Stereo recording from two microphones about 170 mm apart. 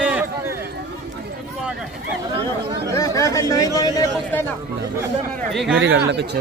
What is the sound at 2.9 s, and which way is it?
Speech, 20° left (ahead or behind).